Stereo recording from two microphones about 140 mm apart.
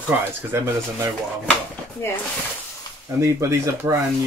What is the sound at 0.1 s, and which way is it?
Speech, 20° right (ahead or behind).